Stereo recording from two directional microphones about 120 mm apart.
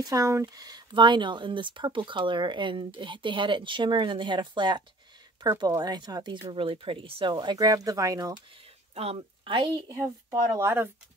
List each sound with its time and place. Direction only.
0.0 s speech: 25° right (ahead or behind)
8.9 s a woman's voice: 55° right (ahead or behind)
10.5 s speech: 20° right (ahead or behind)